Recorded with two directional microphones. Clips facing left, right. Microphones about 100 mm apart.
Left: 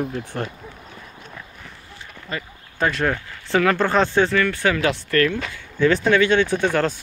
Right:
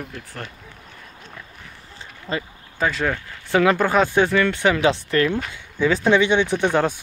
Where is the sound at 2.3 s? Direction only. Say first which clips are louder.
Right 4 dB; 30° right (ahead or behind).